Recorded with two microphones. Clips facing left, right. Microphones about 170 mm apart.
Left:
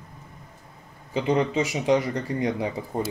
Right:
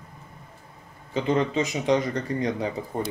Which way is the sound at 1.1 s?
20° left (ahead or behind).